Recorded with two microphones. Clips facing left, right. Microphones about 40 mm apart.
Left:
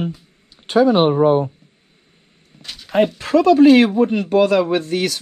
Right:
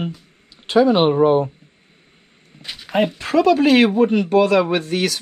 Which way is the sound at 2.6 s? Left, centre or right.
Centre.